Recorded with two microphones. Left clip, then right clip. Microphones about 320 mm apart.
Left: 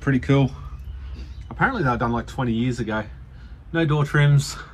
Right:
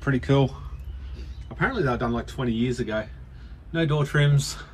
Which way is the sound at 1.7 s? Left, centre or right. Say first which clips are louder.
Left 2 dB; centre.